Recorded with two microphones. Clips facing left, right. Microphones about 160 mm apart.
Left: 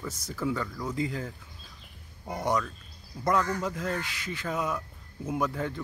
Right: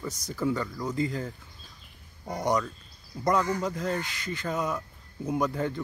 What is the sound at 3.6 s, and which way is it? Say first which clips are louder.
Speech: right 2 dB; centre (ahead or behind).